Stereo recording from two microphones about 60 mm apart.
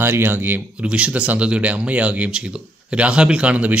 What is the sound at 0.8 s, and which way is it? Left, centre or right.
Speech, centre.